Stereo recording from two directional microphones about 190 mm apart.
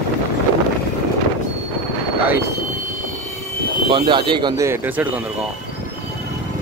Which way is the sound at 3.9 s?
25° right (ahead or behind).